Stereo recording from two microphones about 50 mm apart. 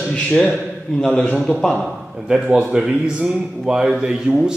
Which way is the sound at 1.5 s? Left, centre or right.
Centre.